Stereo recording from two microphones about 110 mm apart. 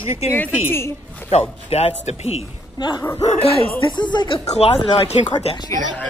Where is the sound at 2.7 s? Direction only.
45° left (ahead or behind).